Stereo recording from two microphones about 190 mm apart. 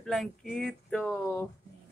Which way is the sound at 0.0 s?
Centre (ahead or behind).